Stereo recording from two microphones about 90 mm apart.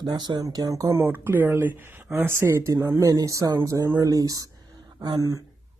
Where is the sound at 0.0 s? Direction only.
55° right (ahead or behind).